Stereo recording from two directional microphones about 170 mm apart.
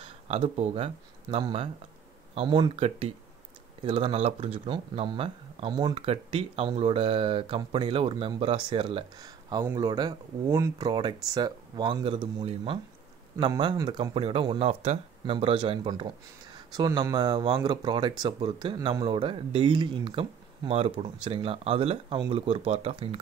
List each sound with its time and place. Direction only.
0.0 s speech: 35° right (ahead or behind)